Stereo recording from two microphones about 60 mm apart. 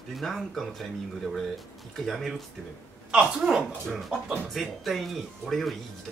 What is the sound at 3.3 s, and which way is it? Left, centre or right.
Speech, centre.